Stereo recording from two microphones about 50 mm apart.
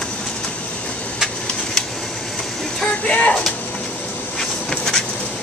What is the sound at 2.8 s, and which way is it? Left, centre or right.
Vehicle, left.